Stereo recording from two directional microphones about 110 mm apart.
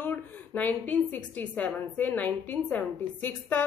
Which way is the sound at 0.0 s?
15° left (ahead or behind).